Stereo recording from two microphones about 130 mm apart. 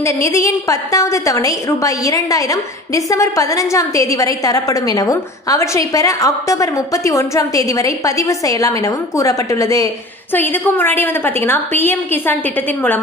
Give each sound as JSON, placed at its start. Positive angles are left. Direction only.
{"t": 0.0, "sound": "a woman's voice", "side_deg": 25}
{"t": 10.3, "sound": "a woman's voice", "side_deg": 15}